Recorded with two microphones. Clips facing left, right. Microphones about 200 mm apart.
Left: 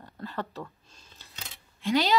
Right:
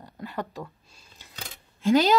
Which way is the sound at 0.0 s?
15° right (ahead or behind).